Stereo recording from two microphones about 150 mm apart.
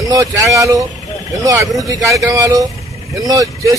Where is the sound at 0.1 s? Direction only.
20° right (ahead or behind).